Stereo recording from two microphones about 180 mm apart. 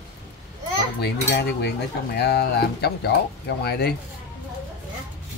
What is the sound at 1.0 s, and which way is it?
Cutlery, 65° left (ahead or behind).